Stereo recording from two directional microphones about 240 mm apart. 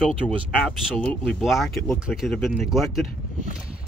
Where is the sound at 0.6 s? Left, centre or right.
Centre.